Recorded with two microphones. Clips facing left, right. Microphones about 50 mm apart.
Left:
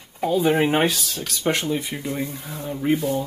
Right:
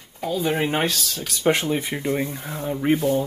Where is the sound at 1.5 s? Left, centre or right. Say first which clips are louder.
Right 1 dB; centre.